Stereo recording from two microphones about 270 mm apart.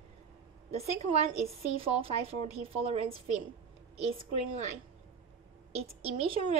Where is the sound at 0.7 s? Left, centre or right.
Right.